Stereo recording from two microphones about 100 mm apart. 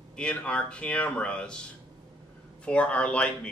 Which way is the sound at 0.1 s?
10° left (ahead or behind).